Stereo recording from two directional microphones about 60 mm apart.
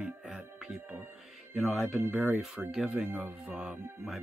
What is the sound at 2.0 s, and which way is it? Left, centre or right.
Speech, right.